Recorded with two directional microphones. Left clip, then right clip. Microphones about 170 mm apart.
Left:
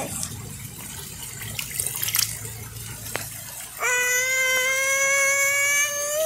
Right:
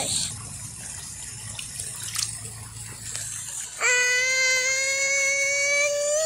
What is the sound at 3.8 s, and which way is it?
Baby cry, 5° right (ahead or behind).